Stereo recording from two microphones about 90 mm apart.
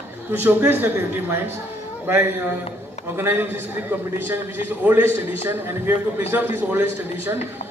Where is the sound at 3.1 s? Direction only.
25° right (ahead or behind).